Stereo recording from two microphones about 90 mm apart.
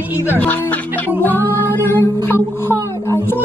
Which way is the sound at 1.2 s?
25° left (ahead or behind).